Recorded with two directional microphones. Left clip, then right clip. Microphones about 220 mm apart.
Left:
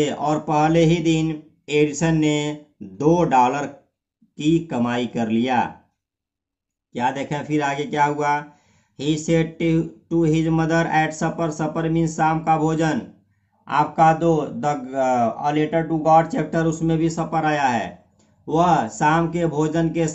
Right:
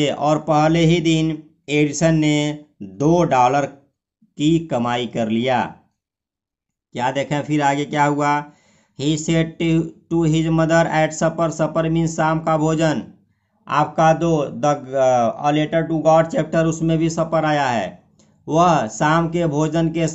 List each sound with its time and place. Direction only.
0.0 s speech: 35° right (ahead or behind)
6.9 s speech: 40° right (ahead or behind)